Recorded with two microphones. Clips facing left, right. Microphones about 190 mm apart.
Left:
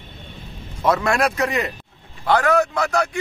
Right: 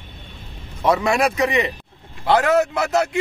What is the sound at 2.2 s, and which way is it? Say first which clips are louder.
Speech: right 1 dB; 20° right (ahead or behind).